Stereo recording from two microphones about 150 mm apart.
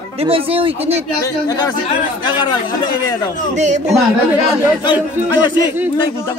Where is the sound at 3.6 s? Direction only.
50° right (ahead or behind).